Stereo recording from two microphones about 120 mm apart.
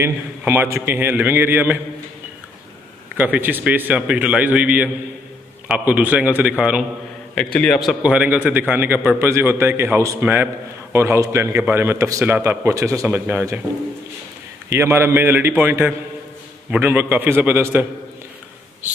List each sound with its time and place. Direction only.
0.0 s a man's voice: 20° right (ahead or behind)
3.2 s a man's voice: 15° right (ahead or behind)
7.5 s a man's voice: 5° left (ahead or behind)
8.0 s a man's voice: 10° right (ahead or behind)
14.7 s a man's voice: 20° right (ahead or behind)